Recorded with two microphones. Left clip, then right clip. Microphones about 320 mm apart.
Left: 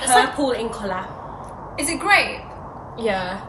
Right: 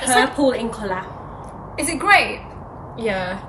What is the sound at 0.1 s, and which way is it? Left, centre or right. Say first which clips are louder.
A woman's voice: even; centre.